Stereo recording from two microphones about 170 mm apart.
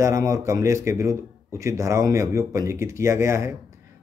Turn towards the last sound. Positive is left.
turn(degrees=-15)  # may be behind; listen again after turning